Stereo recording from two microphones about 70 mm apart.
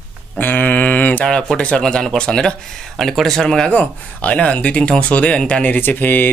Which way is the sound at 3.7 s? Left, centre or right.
Centre.